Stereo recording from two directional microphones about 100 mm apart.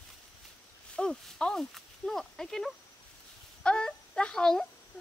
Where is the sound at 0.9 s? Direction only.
5° left (ahead or behind).